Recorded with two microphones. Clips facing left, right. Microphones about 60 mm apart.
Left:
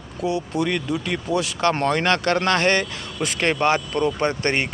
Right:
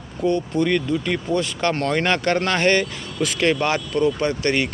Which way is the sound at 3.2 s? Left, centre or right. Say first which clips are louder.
Even; left.